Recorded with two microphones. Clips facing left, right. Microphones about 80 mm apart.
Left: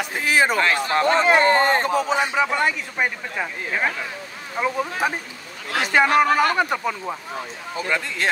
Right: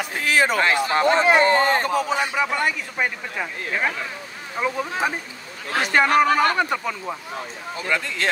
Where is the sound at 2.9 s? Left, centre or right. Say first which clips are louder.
Left 1 dB; centre.